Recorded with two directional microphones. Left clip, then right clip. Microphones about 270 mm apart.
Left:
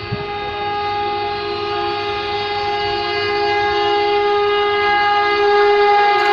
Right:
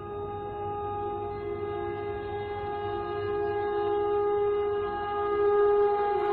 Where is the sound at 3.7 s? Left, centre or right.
Left.